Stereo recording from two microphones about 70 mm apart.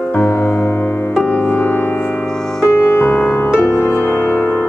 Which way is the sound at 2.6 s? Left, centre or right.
Left.